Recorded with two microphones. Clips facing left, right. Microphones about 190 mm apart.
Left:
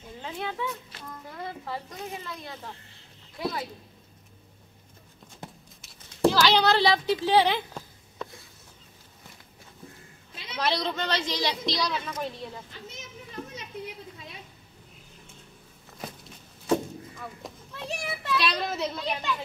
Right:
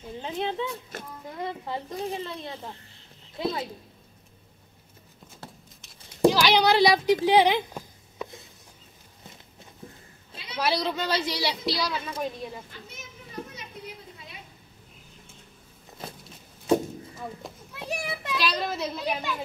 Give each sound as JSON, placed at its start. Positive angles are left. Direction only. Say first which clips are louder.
{"t": 0.2, "sound": "speech", "louder": "right 3 dB", "side_deg": -20}
{"t": 2.0, "sound": "speech", "louder": "right 6 dB", "side_deg": -30}
{"t": 5.4, "sound": "horse", "louder": "left 2 dB", "side_deg": 15}
{"t": 6.2, "sound": "a child's voice", "louder": "right 1 dB", "side_deg": -15}
{"t": 7.2, "sound": "a sound", "louder": "right 1 dB", "side_deg": -15}
{"t": 10.6, "sound": "a woman's voice", "louder": "right 2 dB", "side_deg": -10}
{"t": 17.4, "sound": "children playing", "louder": "even", "side_deg": 0}
{"t": 17.7, "sound": "children playing", "louder": "right 2 dB", "side_deg": -10}
{"t": 18.4, "sound": "a woman's voice", "louder": "right 3 dB", "side_deg": -5}